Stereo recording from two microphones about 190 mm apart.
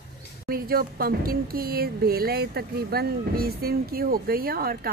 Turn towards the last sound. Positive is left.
turn(degrees=-50)  # may be behind; listen again after turning